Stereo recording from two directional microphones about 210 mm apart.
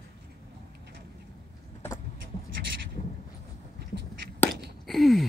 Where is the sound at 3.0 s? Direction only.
30° left (ahead or behind).